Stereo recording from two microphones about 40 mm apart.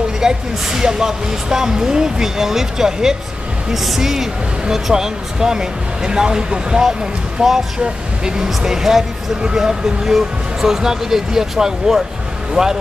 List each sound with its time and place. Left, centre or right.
0.2 s speech: centre